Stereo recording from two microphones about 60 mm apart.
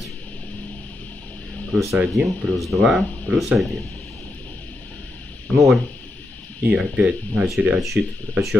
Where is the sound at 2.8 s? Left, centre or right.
Centre.